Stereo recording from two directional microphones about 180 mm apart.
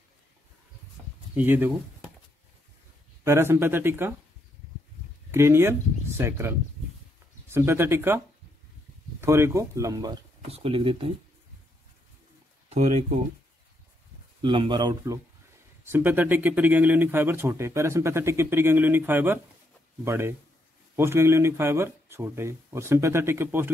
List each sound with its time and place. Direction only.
1.3 s speech: 10° right (ahead or behind)
3.3 s speech: 15° right (ahead or behind)
5.3 s speech: 15° right (ahead or behind)
9.2 s speech: 15° right (ahead or behind); by 11.1 s 30° right (ahead or behind)
12.7 s speech: 40° right (ahead or behind)
14.4 s speech: 25° right (ahead or behind)
15.8 s speech: 10° right (ahead or behind)